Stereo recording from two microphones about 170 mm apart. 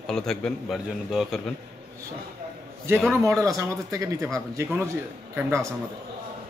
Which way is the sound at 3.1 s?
20° right (ahead or behind).